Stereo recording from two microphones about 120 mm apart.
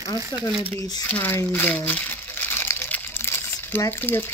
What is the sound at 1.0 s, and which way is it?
Crumpling, 15° left (ahead or behind).